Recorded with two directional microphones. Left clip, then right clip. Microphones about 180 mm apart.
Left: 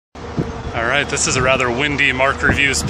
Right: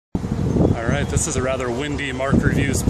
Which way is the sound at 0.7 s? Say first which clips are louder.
Left 7 dB; 10° right (ahead or behind).